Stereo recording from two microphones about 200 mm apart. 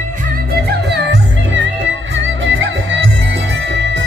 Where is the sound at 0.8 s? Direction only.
60° right (ahead or behind).